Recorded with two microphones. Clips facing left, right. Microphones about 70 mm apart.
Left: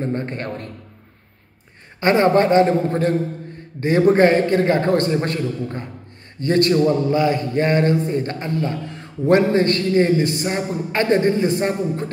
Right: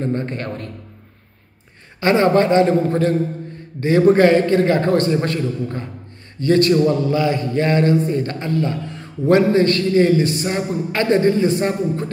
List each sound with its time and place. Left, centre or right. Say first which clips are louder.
0.0 s a man's voice: right 2 dB; left
2.0 s a man's voice: even; left